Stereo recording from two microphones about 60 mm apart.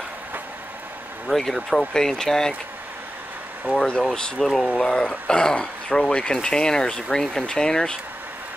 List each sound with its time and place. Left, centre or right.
1.2 s speech: centre
3.7 s speech: centre